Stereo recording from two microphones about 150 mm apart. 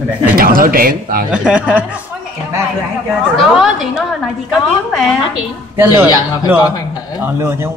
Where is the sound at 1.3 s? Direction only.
10° right (ahead or behind).